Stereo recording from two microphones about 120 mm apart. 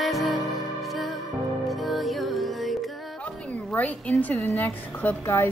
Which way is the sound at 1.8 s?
Centre (ahead or behind).